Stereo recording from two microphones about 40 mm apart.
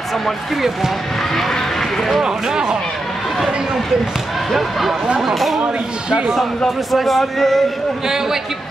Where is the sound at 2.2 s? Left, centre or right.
Centre.